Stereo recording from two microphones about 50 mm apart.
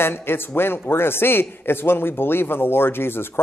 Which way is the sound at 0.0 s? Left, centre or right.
Left.